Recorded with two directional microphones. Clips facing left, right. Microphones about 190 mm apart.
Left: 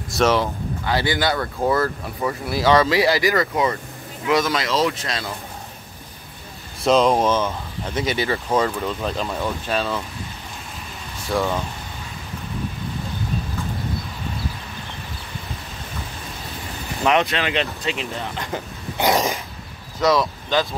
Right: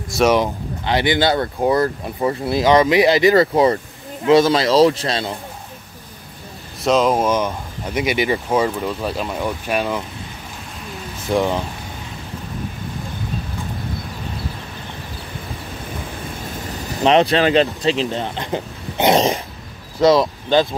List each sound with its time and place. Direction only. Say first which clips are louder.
0.2 s speech: right 3 dB; 15° right (ahead or behind)
1.6 s speech: right 1 dB; 15° right (ahead or behind)
6.8 s speech: even; centre (ahead or behind)
11.2 s speech: right 4 dB; 20° right (ahead or behind)
17.0 s speech: right 6 dB; 30° right (ahead or behind)